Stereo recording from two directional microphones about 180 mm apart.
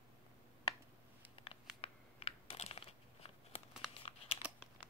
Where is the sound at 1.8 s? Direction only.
35° left (ahead or behind).